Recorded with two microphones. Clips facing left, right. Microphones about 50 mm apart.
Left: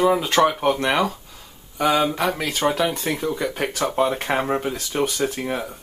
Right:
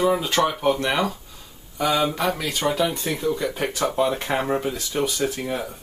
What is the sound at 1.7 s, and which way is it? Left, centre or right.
Speech, left.